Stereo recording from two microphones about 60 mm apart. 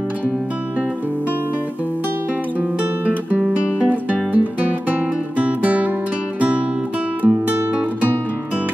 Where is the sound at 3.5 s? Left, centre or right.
Right.